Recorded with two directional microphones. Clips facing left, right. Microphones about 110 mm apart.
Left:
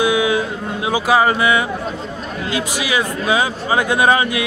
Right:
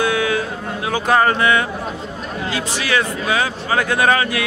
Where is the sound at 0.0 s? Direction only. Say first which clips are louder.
Left 2 dB; 15° left (ahead or behind).